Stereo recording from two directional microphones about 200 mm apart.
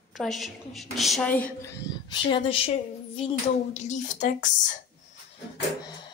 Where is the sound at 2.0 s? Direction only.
25° left (ahead or behind).